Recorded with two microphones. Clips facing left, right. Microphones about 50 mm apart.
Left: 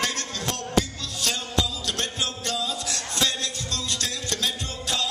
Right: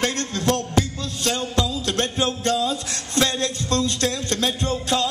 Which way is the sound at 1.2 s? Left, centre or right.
Right.